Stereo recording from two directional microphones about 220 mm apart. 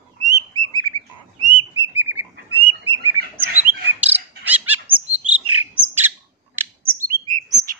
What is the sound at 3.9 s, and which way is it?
Bird, 5° right (ahead or behind).